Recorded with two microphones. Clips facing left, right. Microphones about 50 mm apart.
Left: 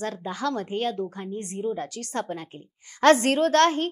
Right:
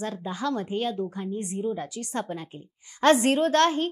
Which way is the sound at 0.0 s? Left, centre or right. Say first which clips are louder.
Left 1 dB; left.